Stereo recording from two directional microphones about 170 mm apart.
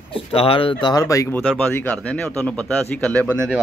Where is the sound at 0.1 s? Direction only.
35° left (ahead or behind); by 1.4 s 20° left (ahead or behind).